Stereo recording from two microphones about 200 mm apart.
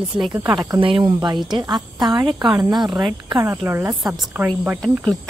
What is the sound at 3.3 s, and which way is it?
Speech, 15° right (ahead or behind).